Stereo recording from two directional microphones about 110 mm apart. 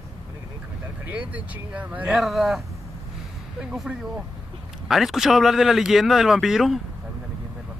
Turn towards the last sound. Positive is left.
turn(degrees=0)  # may be behind; listen again after turning